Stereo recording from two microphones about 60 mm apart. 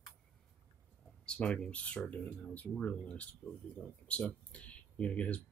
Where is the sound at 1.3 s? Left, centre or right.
Centre.